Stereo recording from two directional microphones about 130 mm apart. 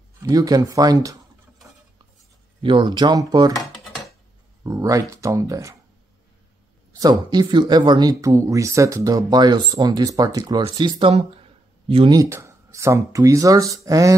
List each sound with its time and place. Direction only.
0.2 s speech: 25° right (ahead or behind)
2.6 s speech: 40° right (ahead or behind)
4.6 s speech: 25° right (ahead or behind)
7.0 s speech: 30° right (ahead or behind)
10.6 s speech: 45° right (ahead or behind)
12.1 s speech: 25° right (ahead or behind)